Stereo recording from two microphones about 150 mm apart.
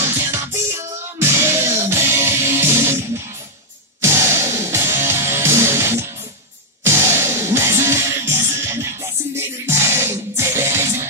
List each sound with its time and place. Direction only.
0.0 s music: 15° right (ahead or behind)